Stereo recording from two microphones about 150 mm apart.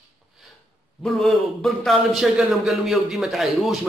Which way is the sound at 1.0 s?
Centre (ahead or behind).